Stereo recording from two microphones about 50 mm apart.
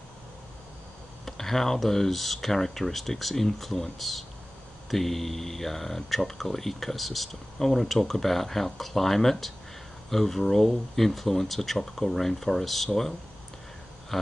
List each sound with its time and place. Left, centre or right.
1.2 s speech: centre
4.9 s speech: centre
14.1 s speech: centre